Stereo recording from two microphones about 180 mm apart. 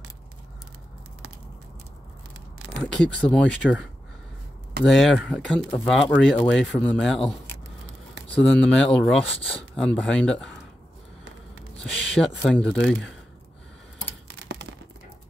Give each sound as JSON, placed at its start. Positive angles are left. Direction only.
{"t": 2.8, "sound": "speech", "side_deg": 5}
{"t": 4.8, "sound": "speech", "side_deg": 0}
{"t": 11.8, "sound": "speech", "side_deg": 5}
{"t": 14.2, "sound": "a sound", "side_deg": -90}